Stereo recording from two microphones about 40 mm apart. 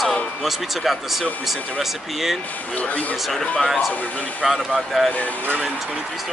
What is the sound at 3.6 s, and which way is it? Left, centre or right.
Speech, centre.